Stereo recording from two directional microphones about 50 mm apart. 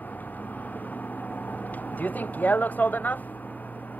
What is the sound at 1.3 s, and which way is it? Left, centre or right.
Speech, left.